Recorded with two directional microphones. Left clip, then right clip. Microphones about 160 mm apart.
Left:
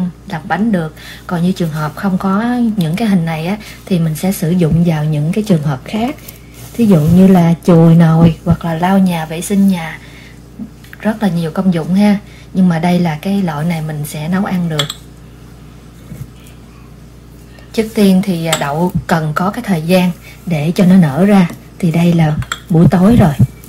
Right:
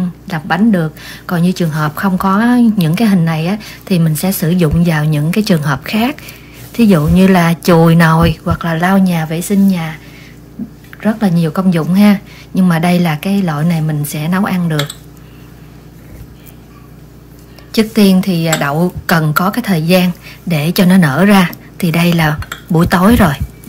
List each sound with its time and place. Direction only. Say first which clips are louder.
0.3 s speech: right 2 dB; 35° right (ahead or behind)
11.0 s speech: right 1 dB; 25° right (ahead or behind); by 14.8 s 45° right (ahead or behind)
17.7 s speech: right 1 dB; 45° right (ahead or behind)